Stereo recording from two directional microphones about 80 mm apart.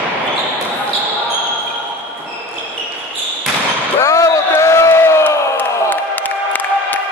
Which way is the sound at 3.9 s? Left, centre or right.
Left.